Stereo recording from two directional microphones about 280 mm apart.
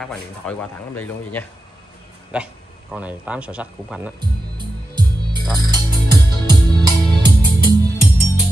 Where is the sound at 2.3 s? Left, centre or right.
Centre.